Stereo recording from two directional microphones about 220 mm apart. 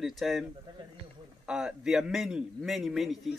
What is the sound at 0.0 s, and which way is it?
Speech, centre (ahead or behind).